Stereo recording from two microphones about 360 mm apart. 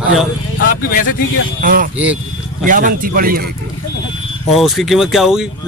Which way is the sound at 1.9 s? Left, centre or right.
Centre.